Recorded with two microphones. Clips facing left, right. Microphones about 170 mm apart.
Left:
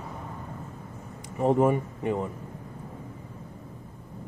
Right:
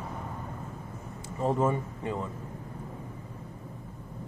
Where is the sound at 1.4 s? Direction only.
15° left (ahead or behind).